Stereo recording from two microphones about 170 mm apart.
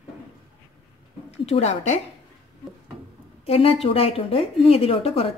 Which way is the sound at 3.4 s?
35° left (ahead or behind).